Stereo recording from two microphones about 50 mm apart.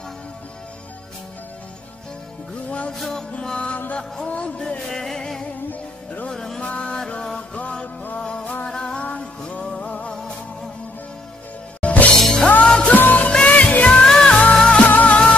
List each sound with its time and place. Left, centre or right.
2.9 s music: centre
3.5 s music: left
4.8 s music: centre
6.6 s music: left
7.1 s music: centre
8.6 s music: centre
11.8 s music: left
12.2 s music: centre
12.6 s music: centre
12.9 s music: left
13.3 s music: left
14.0 s music: centre